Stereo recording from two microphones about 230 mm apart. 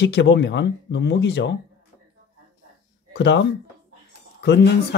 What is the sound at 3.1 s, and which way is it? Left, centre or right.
Speech, left.